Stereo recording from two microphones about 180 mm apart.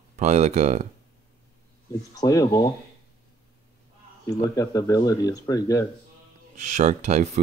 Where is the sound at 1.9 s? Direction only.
20° left (ahead or behind).